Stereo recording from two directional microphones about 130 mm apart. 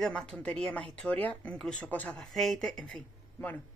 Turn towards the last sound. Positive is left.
turn(degrees=10)  # may be behind; listen again after turning